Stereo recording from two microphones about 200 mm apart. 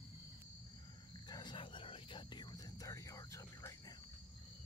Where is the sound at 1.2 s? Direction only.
20° left (ahead or behind).